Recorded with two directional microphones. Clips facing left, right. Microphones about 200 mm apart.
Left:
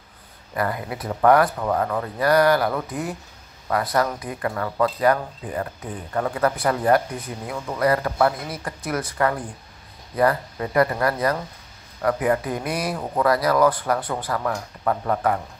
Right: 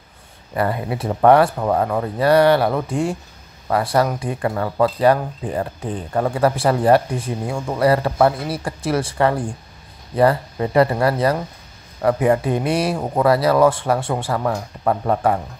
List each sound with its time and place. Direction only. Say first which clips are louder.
0.6 s speech: right 5 dB; 25° right (ahead or behind)